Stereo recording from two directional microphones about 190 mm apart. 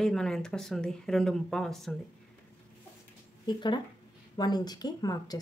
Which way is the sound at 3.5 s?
25° left (ahead or behind).